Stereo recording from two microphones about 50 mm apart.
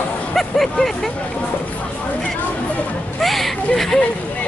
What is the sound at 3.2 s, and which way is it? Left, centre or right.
Speech, centre.